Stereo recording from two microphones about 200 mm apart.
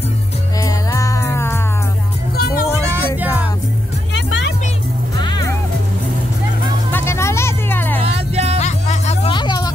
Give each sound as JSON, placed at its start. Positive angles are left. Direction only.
{"t": 0.6, "sound": "music", "side_deg": 15}
{"t": 2.3, "sound": "music", "side_deg": 50}
{"t": 2.8, "sound": "music", "side_deg": -10}
{"t": 4.1, "sound": "music", "side_deg": 65}
{"t": 5.2, "sound": "music", "side_deg": 20}
{"t": 6.9, "sound": "music", "side_deg": 10}
{"t": 8.0, "sound": "music", "side_deg": -30}
{"t": 8.5, "sound": "music", "side_deg": 35}